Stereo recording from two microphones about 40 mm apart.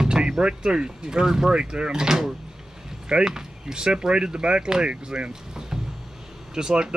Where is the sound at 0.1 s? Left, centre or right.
Right.